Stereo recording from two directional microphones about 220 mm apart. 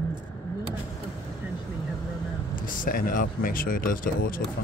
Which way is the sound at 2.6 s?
40° left (ahead or behind).